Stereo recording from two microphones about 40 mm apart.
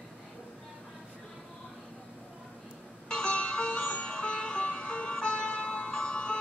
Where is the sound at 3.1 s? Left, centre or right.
Left.